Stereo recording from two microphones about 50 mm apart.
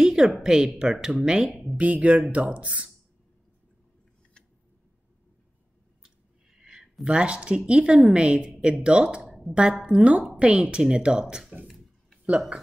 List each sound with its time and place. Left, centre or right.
0.0 s a sound: centre
0.4 s a woman's voice: centre
1.8 s a woman's voice: right
6.6 s a woman's voice: centre
9.2 s a sound: centre
9.5 s a woman's voice: centre